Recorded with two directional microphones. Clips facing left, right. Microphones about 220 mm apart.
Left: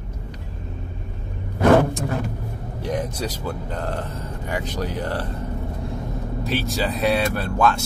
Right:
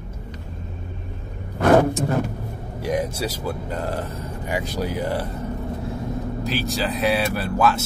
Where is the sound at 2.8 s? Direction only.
10° right (ahead or behind).